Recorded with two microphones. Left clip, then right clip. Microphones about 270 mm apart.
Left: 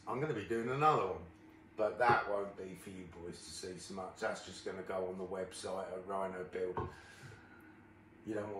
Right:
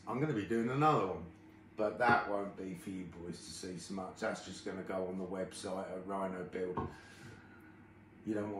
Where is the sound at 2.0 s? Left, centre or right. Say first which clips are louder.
Right 1 dB; centre.